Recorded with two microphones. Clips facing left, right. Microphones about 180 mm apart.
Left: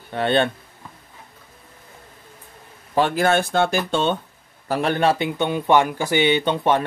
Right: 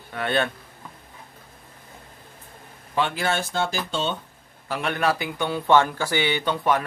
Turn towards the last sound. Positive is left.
turn(degrees=25)  # may be behind; listen again after turning